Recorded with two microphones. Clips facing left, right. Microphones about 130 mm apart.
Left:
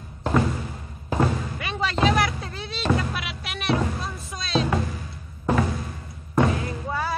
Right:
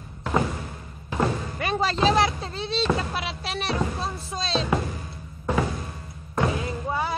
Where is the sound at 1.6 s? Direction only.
40° right (ahead or behind).